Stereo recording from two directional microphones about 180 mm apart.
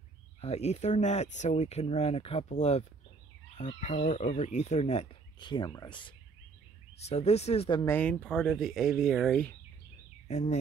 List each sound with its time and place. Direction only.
0.4 s speech: 35° left (ahead or behind)
3.8 s speech: 45° left (ahead or behind); by 6.1 s 25° left (ahead or behind)
7.1 s speech: 35° left (ahead or behind)
7.8 s speech: 10° left (ahead or behind)
10.2 s speech: 40° left (ahead or behind)